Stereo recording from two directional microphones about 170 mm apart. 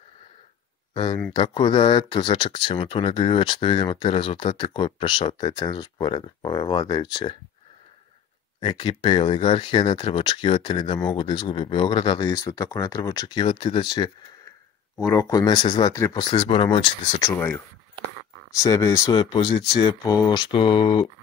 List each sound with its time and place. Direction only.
0.9 s speech: 30° left (ahead or behind)
8.5 s speech: 30° left (ahead or behind)
17.2 s speech: 10° left (ahead or behind)